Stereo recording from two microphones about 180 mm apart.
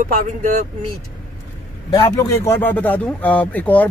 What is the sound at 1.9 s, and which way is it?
Speech, 15° left (ahead or behind).